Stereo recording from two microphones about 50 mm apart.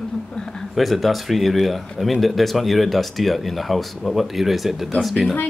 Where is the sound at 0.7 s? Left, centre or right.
Centre.